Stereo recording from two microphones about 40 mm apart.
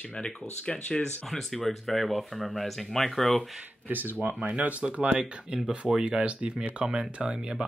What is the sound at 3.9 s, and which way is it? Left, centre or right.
Speech, right.